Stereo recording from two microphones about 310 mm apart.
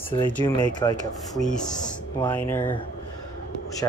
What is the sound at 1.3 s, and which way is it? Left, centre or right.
Speech, centre.